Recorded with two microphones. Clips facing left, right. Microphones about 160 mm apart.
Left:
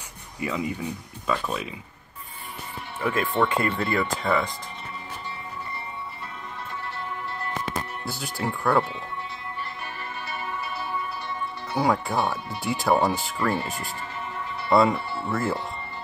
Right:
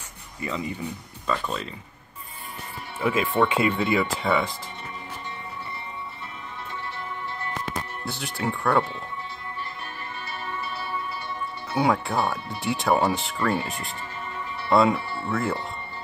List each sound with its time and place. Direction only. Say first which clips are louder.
0.4 s speech: left 2 dB; 5° left (ahead or behind)
3.0 s speech: right 2 dB; 5° right (ahead or behind)
8.0 s speech: even; centre (ahead or behind)
11.7 s speech: right 1 dB; centre (ahead or behind)